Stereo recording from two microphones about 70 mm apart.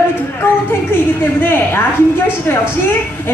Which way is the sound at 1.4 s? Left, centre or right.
Left.